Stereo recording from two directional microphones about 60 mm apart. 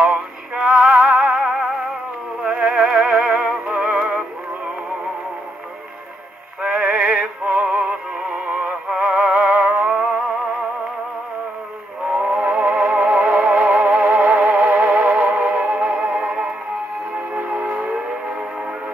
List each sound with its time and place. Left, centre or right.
0.0 s music: centre
0.8 s music: centre
6.7 s music: centre
12.1 s music: centre
17.6 s civil defense siren: centre